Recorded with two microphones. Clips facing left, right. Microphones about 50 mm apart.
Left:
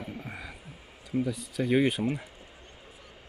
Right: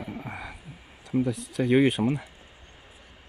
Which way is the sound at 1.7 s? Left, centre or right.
Right.